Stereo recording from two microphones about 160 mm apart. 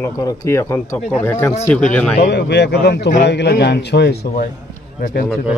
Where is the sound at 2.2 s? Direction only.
90° left.